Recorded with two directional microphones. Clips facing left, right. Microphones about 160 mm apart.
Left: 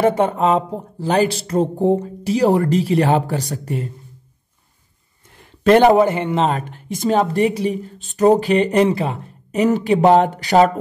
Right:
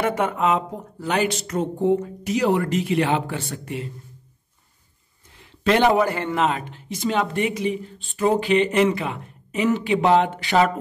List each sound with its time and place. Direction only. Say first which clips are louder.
0.0 s speech: left 6 dB; 30° left (ahead or behind)
5.4 s a sound: left 7 dB; 50° left (ahead or behind)
5.9 s a man's voice: left 5 dB; 20° left (ahead or behind)
6.4 s speech: left 3 dB; 45° left (ahead or behind)